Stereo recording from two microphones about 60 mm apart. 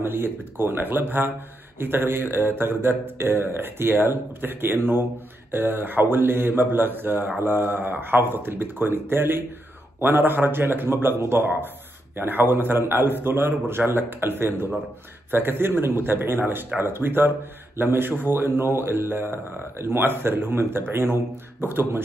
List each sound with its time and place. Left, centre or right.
0.0 s a man's voice: right